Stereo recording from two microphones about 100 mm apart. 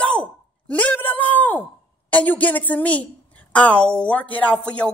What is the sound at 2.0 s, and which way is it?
Speech, 15° left (ahead or behind).